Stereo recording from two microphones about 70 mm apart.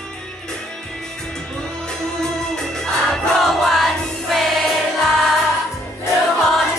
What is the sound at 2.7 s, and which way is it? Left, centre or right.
Music, centre.